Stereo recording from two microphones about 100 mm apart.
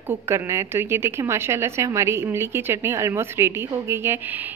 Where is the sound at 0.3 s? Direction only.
25° right (ahead or behind).